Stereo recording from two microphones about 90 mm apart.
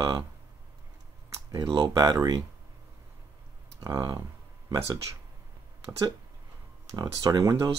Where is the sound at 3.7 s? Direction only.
45° right (ahead or behind).